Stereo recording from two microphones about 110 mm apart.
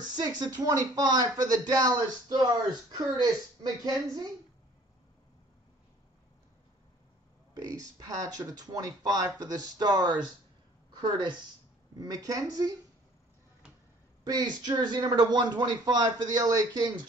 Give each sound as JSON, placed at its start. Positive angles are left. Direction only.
{"t": 0.0, "sound": "speech", "side_deg": -40}
{"t": 7.5, "sound": "a woman's voice", "side_deg": -35}
{"t": 14.2, "sound": "speech", "side_deg": -40}